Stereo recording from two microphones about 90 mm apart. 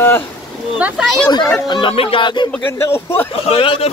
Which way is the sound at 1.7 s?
70° left (ahead or behind).